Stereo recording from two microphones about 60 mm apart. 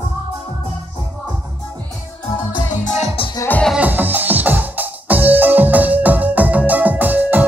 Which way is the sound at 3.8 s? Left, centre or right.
Right.